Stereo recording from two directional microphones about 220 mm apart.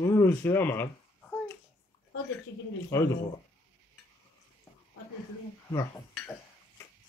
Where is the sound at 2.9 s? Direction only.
10° left (ahead or behind).